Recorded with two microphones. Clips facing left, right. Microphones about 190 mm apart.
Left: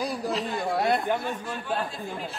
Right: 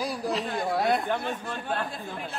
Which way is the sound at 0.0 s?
Centre (ahead or behind).